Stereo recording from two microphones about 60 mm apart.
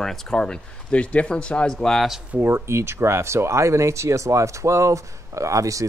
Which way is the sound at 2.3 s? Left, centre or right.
Right.